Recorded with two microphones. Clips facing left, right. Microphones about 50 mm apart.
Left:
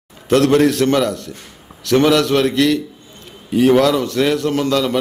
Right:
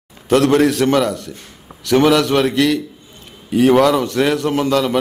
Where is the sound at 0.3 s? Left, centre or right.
Centre.